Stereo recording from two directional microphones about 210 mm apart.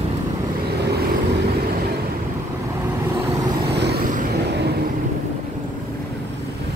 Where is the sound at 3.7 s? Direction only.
50° right (ahead or behind).